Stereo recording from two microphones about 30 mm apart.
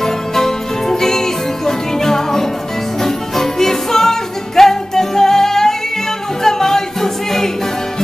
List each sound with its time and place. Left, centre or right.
0.0 s music: centre